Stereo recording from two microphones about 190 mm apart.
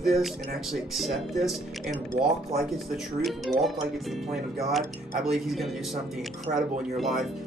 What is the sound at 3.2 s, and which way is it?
Speech, centre (ahead or behind).